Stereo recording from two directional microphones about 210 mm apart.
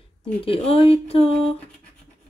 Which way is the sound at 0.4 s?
25° left (ahead or behind).